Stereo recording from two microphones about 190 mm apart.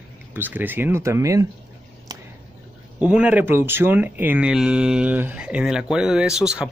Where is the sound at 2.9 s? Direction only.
5° right (ahead or behind).